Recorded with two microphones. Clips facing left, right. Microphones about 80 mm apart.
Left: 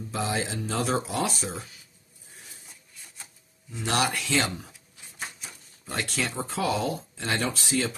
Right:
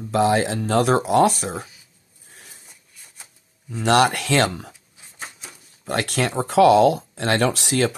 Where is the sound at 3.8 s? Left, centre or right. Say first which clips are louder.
Right 9 dB; right.